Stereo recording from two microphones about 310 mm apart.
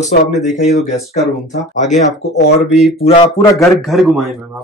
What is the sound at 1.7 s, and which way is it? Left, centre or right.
Speech, left.